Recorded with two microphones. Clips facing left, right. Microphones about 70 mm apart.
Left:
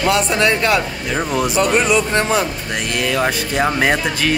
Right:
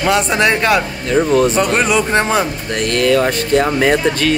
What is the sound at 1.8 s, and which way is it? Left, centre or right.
Speech, right.